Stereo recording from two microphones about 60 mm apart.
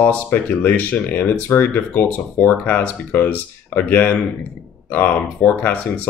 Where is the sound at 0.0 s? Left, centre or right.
Left.